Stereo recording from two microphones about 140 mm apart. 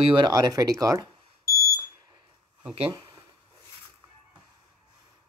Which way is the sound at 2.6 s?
15° right (ahead or behind).